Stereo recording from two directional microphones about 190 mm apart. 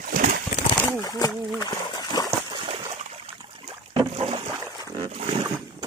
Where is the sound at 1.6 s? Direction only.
20° left (ahead or behind).